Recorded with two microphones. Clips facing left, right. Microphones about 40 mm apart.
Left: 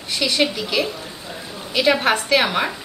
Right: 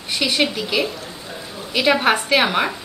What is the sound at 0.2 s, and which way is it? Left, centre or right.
A woman's voice, centre.